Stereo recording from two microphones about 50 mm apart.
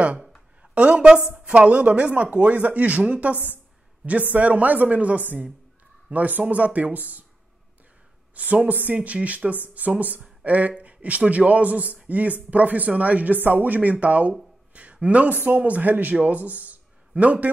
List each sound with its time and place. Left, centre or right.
0.6 s a woman's voice: right
8.4 s speech: right